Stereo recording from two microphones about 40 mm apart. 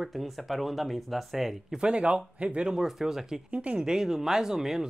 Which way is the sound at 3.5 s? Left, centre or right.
Right.